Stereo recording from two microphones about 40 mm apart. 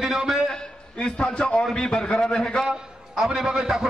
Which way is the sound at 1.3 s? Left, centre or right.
Left.